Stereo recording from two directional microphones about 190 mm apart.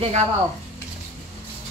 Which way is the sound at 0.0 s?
35° right (ahead or behind).